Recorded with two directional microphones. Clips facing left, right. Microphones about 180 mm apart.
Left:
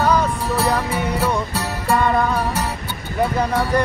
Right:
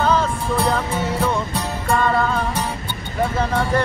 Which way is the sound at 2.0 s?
15° left (ahead or behind).